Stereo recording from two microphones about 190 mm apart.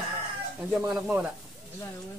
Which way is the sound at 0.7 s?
5° right (ahead or behind).